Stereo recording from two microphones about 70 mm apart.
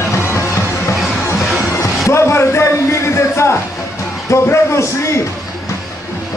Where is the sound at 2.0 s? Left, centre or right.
Left.